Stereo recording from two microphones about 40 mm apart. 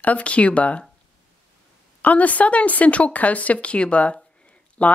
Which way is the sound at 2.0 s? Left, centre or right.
Left.